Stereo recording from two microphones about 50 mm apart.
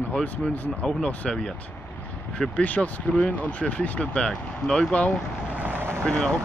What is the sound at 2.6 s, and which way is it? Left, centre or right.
Speech, left.